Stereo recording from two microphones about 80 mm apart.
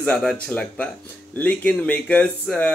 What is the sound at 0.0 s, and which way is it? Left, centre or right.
Speech, centre.